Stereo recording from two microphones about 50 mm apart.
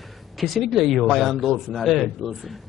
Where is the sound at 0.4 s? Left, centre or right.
Centre.